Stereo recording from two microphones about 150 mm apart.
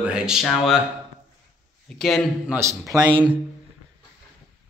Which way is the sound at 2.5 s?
20° right (ahead or behind).